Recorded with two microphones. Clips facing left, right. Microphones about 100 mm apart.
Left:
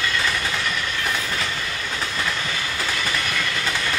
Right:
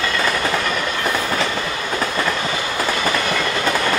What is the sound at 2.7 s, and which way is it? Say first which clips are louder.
Train: right 7 dB; 45° right (ahead or behind).